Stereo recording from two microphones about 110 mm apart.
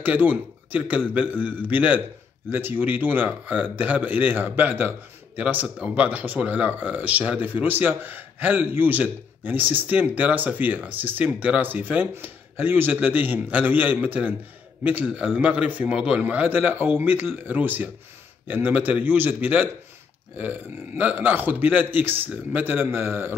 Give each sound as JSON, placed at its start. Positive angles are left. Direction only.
{"t": 0.0, "sound": "speech", "side_deg": -15}